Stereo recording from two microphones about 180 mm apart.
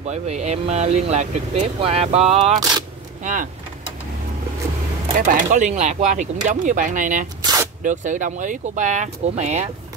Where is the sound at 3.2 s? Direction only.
45° right (ahead or behind).